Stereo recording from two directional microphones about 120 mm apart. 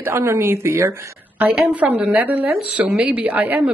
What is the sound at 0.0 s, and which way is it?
Speech, 20° right (ahead or behind).